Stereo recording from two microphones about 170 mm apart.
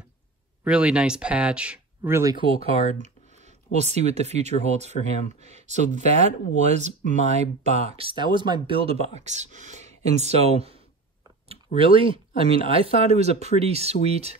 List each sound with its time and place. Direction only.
0.7 s speech: 5° right (ahead or behind)
2.4 s speech: 35° right (ahead or behind)